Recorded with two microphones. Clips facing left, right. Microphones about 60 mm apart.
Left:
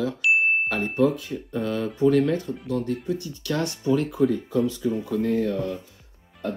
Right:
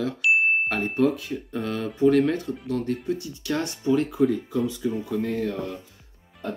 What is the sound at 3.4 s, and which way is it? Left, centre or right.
Speech, right.